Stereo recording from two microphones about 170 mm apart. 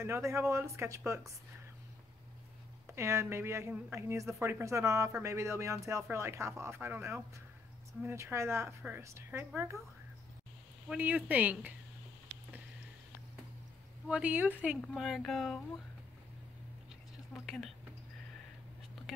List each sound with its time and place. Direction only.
0.0 s a woman's voice: 15° right (ahead or behind)
2.9 s a woman's voice: 15° right (ahead or behind)
10.9 s a woman's voice: 10° right (ahead or behind)
14.0 s a woman's voice: 5° right (ahead or behind)
17.3 s speech: centre (ahead or behind)